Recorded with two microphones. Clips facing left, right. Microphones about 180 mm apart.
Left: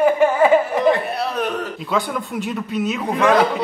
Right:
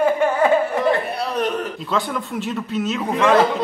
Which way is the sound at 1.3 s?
Centre (ahead or behind).